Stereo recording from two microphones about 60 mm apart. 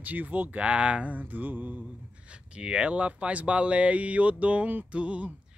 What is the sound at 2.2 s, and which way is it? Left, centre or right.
Speech, centre.